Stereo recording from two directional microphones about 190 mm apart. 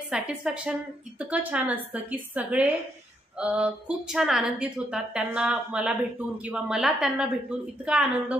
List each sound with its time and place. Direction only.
0.1 s a woman's voice: 5° right (ahead or behind)